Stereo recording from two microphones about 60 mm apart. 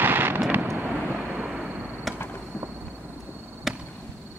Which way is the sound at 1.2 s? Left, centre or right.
Right.